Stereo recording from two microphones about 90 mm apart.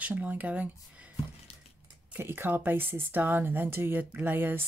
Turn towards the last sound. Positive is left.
turn(degrees=-20)  # may be behind; listen again after turning